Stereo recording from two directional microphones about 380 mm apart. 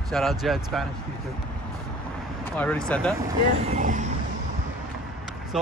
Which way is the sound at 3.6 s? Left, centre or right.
Centre.